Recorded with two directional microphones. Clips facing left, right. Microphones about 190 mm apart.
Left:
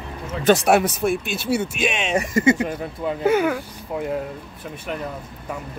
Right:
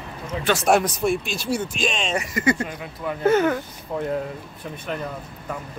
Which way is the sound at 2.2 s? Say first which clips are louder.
Left 6 dB; 25° left (ahead or behind).